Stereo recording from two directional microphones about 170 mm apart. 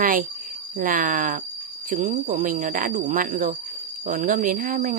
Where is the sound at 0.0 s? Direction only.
55° right (ahead or behind).